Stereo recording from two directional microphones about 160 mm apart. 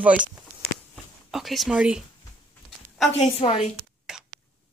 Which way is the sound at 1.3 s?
Centre (ahead or behind).